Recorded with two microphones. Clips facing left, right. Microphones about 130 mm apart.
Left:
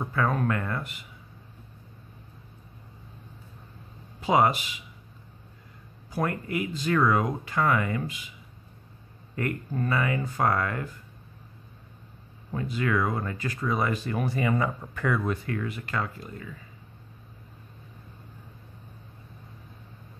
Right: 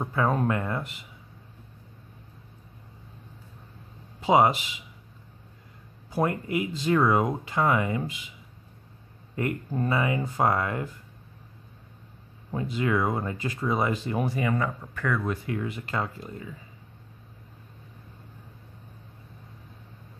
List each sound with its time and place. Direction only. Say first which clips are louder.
0.0 s speech: right 1 dB; 20° right (ahead or behind)
4.2 s speech: right 2 dB; 20° right (ahead or behind)
6.0 s speech: right 3 dB; 25° right (ahead or behind)
9.3 s speech: right 1 dB; 20° right (ahead or behind)
12.4 s speech: right 1 dB; 25° right (ahead or behind)
14.6 s speech: left 1 dB; 15° left (ahead or behind)
15.4 s speech: right 1 dB; 20° right (ahead or behind)